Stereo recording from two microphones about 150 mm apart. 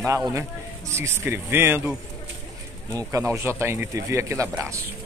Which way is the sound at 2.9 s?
20° right (ahead or behind).